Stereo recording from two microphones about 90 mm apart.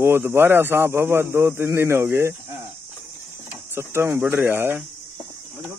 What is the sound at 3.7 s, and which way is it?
A man's voice, 25° right (ahead or behind).